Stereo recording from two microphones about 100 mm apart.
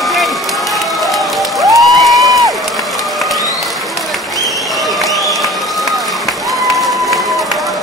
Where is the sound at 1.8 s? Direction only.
Centre (ahead or behind).